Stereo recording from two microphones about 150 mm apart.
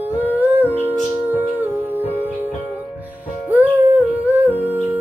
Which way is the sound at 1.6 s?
15° right (ahead or behind).